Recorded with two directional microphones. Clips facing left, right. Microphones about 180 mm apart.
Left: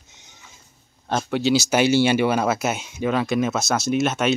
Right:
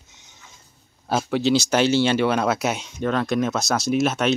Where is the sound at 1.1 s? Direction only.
Centre (ahead or behind).